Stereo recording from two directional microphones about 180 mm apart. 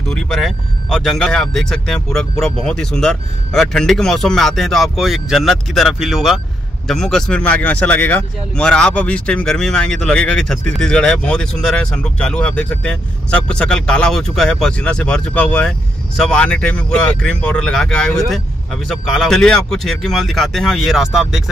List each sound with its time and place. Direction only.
0.1 s speech: centre (ahead or behind)